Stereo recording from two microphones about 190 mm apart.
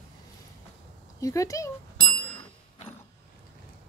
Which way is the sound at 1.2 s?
15° left (ahead or behind).